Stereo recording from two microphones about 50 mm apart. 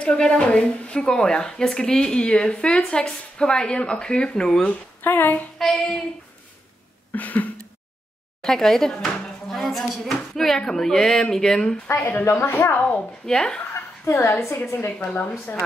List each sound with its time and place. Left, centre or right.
0.0 s speech: centre
5.0 s child singing: left
5.6 s child singing: centre
7.1 s a sound: left
8.4 s speech: centre
12.0 s child singing: left
12.4 s a woman's voice: left
12.7 s a woman's voice: left
13.2 s speech: centre
14.0 s a woman's voice: left